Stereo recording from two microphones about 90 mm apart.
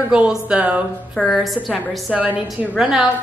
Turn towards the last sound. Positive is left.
turn(degrees=-10)  # may be behind; listen again after turning